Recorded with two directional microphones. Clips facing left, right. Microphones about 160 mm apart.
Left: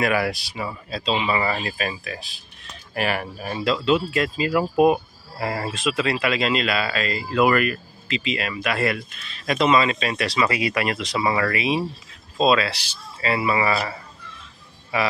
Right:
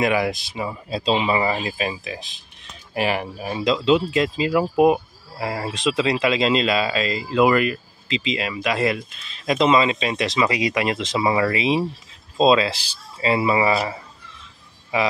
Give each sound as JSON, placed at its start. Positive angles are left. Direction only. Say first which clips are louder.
{"t": 0.0, "sound": "speech", "louder": "right 2 dB", "side_deg": -20}
{"t": 5.8, "sound": "speech", "louder": "right 4 dB", "side_deg": -20}